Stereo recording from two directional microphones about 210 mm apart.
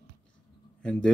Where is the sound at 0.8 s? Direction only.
5° left (ahead or behind).